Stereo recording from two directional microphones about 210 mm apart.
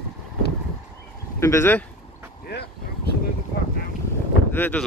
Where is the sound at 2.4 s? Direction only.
50° left (ahead or behind).